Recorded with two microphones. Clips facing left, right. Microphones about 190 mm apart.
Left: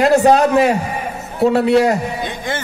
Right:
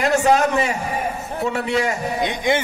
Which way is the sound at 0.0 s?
35° left (ahead or behind).